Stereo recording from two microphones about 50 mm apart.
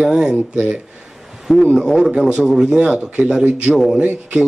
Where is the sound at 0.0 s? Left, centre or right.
Centre.